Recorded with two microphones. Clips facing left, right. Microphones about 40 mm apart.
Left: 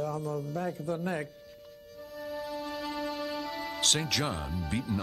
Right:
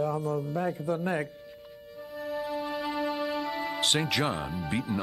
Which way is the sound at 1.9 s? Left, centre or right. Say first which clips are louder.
Right 4 dB; centre.